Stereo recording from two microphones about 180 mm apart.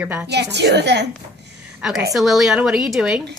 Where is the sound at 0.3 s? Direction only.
70° right (ahead or behind).